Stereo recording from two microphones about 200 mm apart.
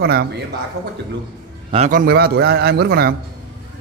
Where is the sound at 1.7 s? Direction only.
35° right (ahead or behind).